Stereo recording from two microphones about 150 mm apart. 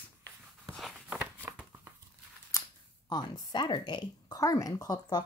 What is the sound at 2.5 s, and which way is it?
Camera, 20° left (ahead or behind).